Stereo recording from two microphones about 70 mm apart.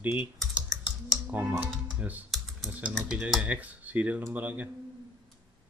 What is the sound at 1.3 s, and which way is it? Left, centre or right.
Speech, right.